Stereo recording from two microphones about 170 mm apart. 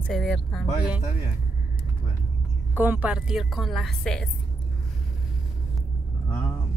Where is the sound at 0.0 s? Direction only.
5° left (ahead or behind).